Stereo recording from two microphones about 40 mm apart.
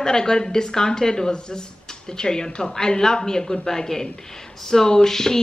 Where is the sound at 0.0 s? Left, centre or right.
Centre.